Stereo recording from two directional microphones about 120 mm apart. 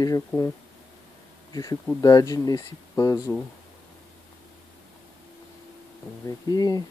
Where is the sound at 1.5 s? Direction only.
30° left (ahead or behind).